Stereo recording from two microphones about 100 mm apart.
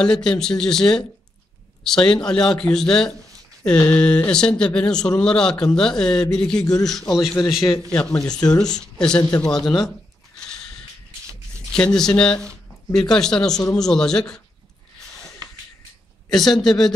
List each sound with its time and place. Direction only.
0.0 s a man's voice: 5° left (ahead or behind)
6.6 s speech: 40° left (ahead or behind)
6.9 s a man's voice: centre (ahead or behind)
8.1 s speech: 35° left (ahead or behind)
8.5 s a man's voice: 10° left (ahead or behind)
11.7 s a man's voice: 5° left (ahead or behind)
15.4 s a sound: 35° right (ahead or behind)
16.3 s a man's voice: centre (ahead or behind)